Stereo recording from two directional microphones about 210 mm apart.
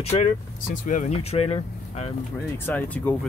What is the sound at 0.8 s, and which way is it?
Speech, 35° left (ahead or behind).